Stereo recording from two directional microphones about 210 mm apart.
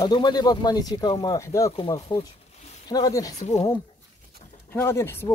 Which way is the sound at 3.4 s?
35° left (ahead or behind).